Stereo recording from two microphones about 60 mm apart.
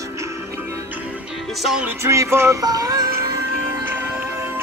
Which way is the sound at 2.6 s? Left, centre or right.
Right.